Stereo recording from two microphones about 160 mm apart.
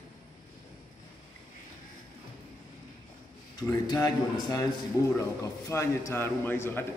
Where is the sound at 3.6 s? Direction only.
25° left (ahead or behind).